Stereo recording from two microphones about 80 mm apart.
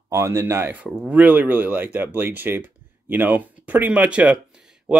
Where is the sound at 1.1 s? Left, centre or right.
Centre.